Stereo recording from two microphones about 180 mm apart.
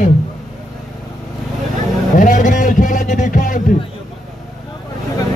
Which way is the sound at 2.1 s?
45° left (ahead or behind).